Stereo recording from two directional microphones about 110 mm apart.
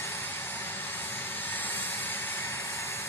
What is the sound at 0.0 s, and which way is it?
Vehicle, 20° left (ahead or behind).